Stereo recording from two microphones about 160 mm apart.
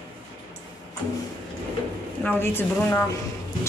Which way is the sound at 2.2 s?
10° left (ahead or behind).